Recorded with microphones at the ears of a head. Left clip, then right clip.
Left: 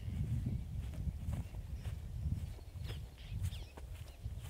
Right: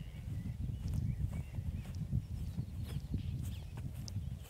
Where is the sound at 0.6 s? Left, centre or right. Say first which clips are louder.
Right 5 dB; right.